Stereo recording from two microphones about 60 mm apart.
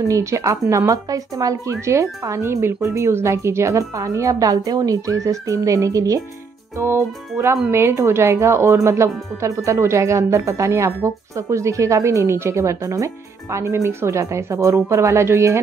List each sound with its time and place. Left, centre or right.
0.1 s speech: right
1.7 s speech: right
6.8 s speech: right